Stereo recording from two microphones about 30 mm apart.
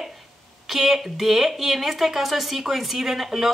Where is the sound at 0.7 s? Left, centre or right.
Centre.